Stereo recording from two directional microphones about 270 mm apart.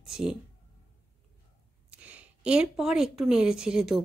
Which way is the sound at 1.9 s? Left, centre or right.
Centre.